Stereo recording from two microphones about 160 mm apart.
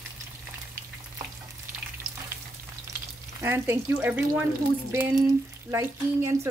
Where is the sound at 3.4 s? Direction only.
15° right (ahead or behind).